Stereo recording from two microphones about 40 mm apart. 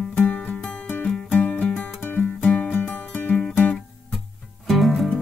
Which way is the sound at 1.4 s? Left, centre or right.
Left.